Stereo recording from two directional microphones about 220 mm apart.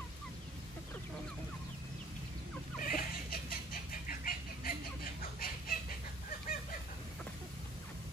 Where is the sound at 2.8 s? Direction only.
40° left (ahead or behind).